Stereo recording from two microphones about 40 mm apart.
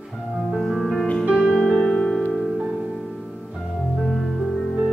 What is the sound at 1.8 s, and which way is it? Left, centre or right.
Music, centre.